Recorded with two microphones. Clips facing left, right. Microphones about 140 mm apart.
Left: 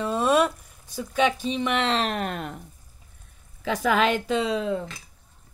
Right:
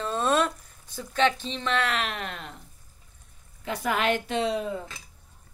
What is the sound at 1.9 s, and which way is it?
Speech, 40° left (ahead or behind).